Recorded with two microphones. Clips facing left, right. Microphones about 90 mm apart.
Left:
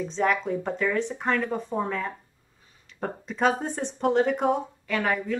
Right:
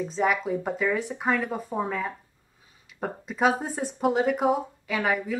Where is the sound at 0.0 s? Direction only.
5° right (ahead or behind).